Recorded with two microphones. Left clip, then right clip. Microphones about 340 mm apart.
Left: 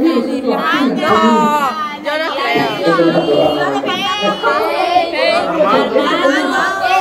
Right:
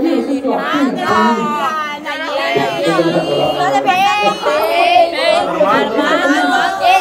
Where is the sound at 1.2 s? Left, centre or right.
Centre.